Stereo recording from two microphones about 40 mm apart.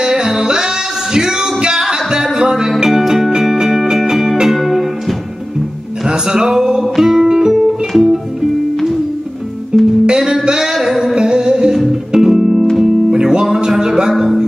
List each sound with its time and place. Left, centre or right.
0.0 s music: centre
2.9 s music: centre
6.0 s music: centre
9.7 s music: centre
14.1 s music: centre